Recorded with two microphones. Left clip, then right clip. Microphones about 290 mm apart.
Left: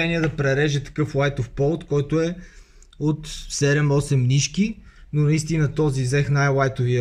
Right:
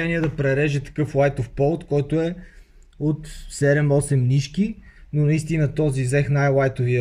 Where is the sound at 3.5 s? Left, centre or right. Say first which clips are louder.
Right 2 dB; centre.